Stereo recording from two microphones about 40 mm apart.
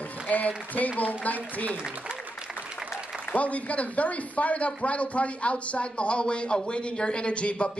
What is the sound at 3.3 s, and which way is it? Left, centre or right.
A man's voice, left.